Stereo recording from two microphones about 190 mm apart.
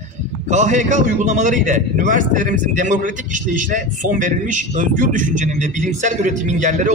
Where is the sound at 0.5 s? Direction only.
40° right (ahead or behind).